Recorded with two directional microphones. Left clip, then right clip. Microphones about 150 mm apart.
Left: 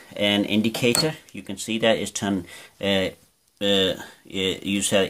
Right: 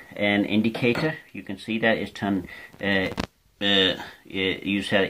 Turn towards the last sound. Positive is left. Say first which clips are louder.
# left 1 dB
turn(degrees=50)  # may be behind; listen again after turning